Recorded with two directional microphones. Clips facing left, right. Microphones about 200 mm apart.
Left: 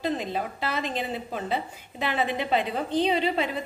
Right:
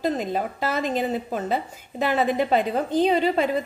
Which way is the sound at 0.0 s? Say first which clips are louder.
Right 4 dB; 45° right (ahead or behind).